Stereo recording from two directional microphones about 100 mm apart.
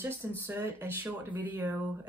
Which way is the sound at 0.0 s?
25° right (ahead or behind).